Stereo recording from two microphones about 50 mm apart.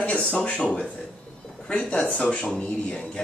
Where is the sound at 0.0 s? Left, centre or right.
Left.